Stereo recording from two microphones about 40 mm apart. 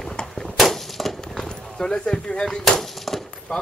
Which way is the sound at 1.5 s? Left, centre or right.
Centre.